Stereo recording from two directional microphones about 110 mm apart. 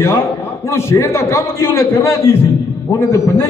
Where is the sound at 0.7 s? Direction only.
25° left (ahead or behind).